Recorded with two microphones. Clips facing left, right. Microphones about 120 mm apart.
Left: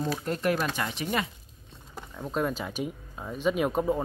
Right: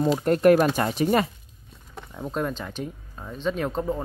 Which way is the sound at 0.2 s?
55° right (ahead or behind).